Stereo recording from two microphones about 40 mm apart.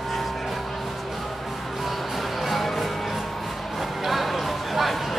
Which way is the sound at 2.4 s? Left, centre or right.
Centre.